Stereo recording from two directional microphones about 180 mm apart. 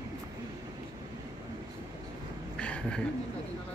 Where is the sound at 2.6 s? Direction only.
5° left (ahead or behind).